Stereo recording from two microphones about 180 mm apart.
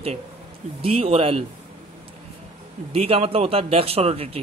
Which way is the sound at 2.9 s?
35° right (ahead or behind).